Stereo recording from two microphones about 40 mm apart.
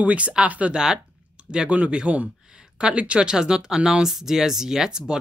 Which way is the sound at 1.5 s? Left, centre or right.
Right.